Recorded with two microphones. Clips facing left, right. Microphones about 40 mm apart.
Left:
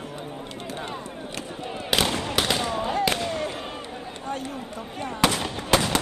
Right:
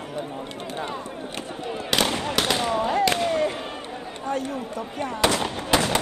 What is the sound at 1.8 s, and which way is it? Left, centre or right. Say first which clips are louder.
Fireworks: even; centre.